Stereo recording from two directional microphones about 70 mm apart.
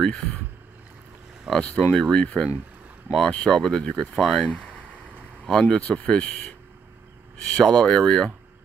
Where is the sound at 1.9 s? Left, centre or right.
Centre.